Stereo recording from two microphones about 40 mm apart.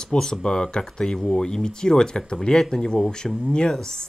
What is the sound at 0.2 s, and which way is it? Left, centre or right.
A woman's voice, centre.